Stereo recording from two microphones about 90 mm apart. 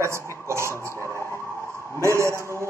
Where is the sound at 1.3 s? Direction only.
30° left (ahead or behind).